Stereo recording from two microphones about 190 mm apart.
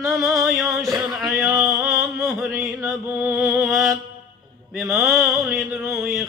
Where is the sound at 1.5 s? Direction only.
15° right (ahead or behind).